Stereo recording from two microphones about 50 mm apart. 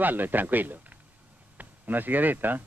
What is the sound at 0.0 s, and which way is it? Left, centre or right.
Speech, right.